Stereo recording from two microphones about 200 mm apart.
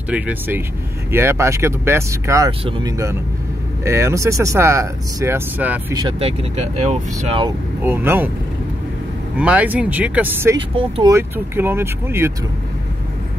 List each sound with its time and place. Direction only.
0.1 s speech: 10° right (ahead or behind)
5.9 s speech: 25° right (ahead or behind)
7.4 s speech: 10° right (ahead or behind)
9.4 s speech: 5° right (ahead or behind)
10.8 s speech: 25° right (ahead or behind)
11.1 s speech: 10° right (ahead or behind)